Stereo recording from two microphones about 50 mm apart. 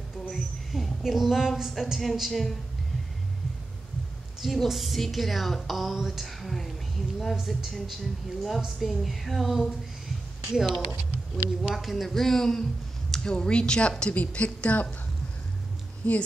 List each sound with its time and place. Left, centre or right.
0.3 s a sound: centre
1.6 s a woman's voice: centre
4.4 s a woman's voice: centre; by 14.9 s left
16.0 s speech: left